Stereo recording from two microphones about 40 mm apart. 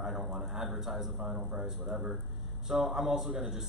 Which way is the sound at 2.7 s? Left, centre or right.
Centre.